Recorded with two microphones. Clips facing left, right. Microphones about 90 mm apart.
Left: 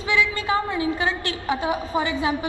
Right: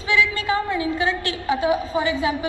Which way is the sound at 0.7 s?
25° left (ahead or behind).